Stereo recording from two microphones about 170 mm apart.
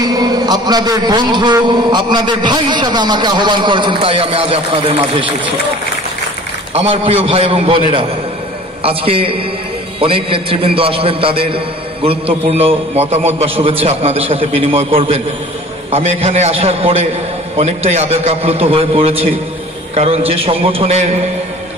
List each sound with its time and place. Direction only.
0.0 s a man's voice: 25° right (ahead or behind)
6.7 s a man's voice: 35° right (ahead or behind)